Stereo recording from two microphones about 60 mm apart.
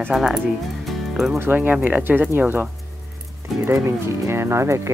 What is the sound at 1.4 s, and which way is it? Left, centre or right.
Speech, right.